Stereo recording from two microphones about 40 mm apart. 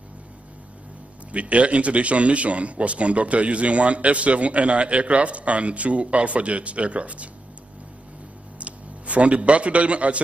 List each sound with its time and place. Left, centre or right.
1.3 s speech: right
8.5 s a man's voice: right